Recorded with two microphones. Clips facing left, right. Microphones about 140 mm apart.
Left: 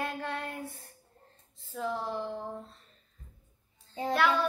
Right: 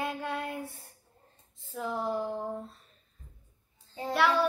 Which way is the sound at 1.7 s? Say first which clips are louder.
Right 2 dB; centre (ahead or behind).